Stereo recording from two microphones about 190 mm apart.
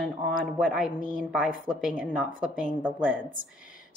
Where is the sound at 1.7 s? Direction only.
Centre (ahead or behind).